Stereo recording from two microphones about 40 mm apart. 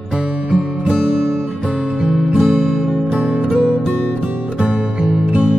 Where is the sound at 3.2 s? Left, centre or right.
Right.